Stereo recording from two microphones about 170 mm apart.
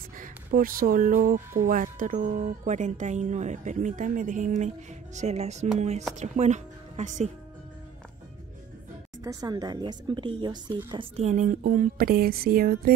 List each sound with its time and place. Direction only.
0.2 s speech: 55° right (ahead or behind)
9.2 s a woman's voice: 20° right (ahead or behind); by 11.6 s 50° right (ahead or behind)
11.6 s a sound: 55° right (ahead or behind)